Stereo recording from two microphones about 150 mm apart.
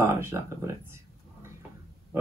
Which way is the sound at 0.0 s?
15° right (ahead or behind).